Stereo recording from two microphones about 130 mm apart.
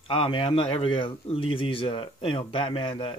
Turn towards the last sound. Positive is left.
turn(degrees=45)  # may be behind; listen again after turning